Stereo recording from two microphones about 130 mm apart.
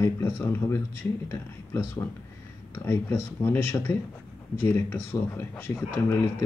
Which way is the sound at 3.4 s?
20° left (ahead or behind).